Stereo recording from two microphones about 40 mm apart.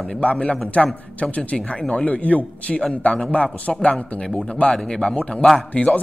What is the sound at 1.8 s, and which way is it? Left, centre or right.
Speech, left.